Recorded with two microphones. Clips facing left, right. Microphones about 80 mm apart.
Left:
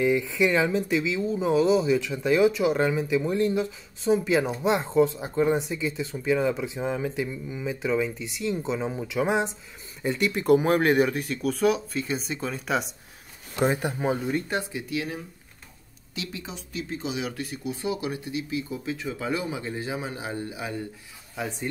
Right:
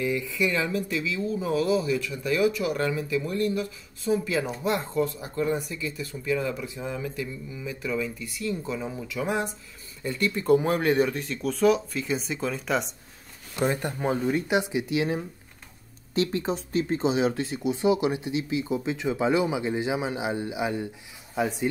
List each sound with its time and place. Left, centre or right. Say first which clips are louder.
0.0 s speech: left 4 dB; left; by 14.3 s centre
14.3 s speech: right 4 dB; centre
16.2 s speech: right 10 dB; right